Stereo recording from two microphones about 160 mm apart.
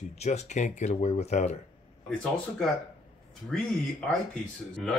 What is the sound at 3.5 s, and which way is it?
Speech, 5° left (ahead or behind).